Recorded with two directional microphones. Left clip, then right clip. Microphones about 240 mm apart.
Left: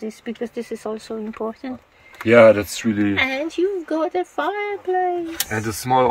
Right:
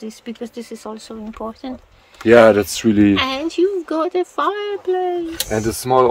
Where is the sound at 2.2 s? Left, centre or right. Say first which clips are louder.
Right 2 dB; right.